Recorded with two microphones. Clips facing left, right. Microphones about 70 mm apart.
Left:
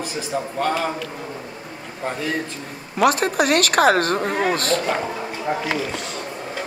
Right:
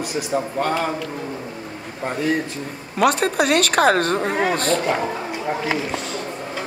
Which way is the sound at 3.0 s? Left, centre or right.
Centre.